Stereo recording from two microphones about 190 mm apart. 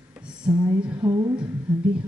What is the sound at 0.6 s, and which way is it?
Speech, 20° right (ahead or behind).